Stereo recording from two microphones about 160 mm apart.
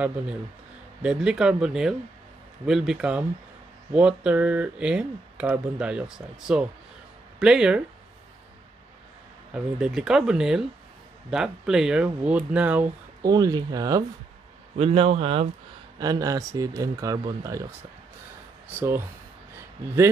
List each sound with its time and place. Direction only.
1.0 s speech: 5° right (ahead or behind)
9.5 s speech: 5° right (ahead or behind)
13.3 s speech: 25° right (ahead or behind)
14.8 s a man's voice: 40° right (ahead or behind)
16.0 s speech: 25° right (ahead or behind)
18.8 s speech: 15° right (ahead or behind)